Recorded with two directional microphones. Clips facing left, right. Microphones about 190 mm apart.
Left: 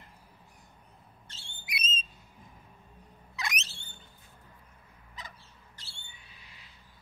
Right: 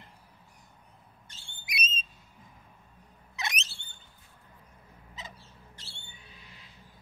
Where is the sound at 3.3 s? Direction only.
25° right (ahead or behind).